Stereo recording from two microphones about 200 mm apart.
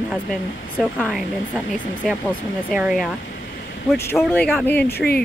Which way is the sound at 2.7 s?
5° right (ahead or behind).